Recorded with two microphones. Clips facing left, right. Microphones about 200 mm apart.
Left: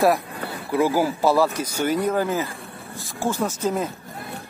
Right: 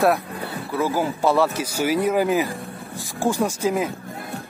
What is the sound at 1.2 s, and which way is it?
Speech, centre (ahead or behind).